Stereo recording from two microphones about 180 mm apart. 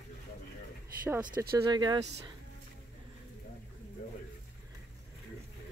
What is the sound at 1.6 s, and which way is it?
Speech, 25° right (ahead or behind).